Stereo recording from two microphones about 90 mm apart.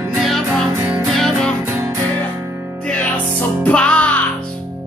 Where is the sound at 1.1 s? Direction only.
5° left (ahead or behind).